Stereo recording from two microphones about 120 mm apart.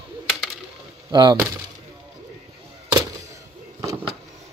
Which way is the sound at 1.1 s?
35° right (ahead or behind).